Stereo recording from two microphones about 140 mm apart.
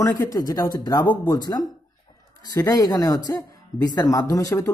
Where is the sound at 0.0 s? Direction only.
25° left (ahead or behind).